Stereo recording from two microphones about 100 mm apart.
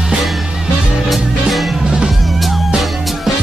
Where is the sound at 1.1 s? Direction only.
Centre (ahead or behind).